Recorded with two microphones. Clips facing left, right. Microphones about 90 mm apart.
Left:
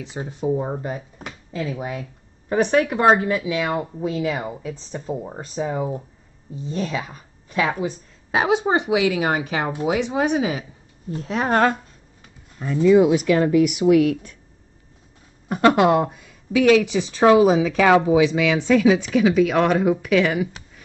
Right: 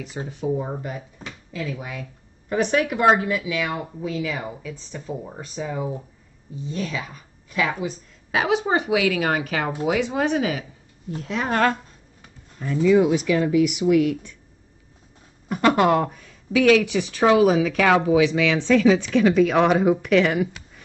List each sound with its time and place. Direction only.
0.0 s a woman's voice: 20° left (ahead or behind)
11.1 s speech: 40° left (ahead or behind)
12.9 s speech: 45° left (ahead or behind)
15.6 s a woman's voice: 20° left (ahead or behind); by 20.8 s centre (ahead or behind)